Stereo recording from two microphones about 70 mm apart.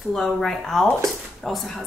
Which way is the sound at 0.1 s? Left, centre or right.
Centre.